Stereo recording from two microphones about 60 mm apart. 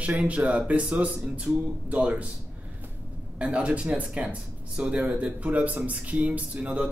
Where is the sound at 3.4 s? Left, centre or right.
Centre.